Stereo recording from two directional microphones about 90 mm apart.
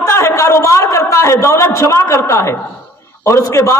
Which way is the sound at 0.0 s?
30° left (ahead or behind).